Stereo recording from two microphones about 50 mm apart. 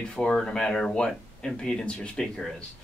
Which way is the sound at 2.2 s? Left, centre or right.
Centre.